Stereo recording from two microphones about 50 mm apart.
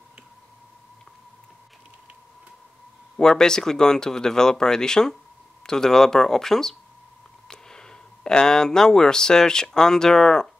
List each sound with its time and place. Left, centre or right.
3.2 s speech: centre